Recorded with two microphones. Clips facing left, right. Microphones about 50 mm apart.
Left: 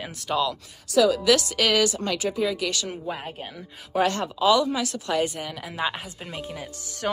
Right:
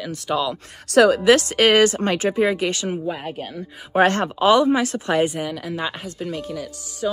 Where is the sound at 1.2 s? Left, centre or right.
Right.